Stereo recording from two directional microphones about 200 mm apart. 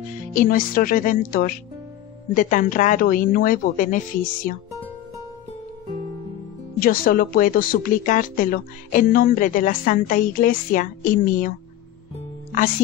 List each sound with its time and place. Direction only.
0.3 s a woman's voice: 45° left (ahead or behind)
6.8 s speech: 45° left (ahead or behind)